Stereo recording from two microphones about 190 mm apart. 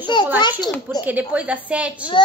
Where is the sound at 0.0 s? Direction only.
25° left (ahead or behind).